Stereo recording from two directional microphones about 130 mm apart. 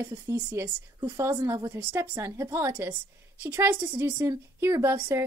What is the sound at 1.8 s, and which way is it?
Speech, 10° right (ahead or behind).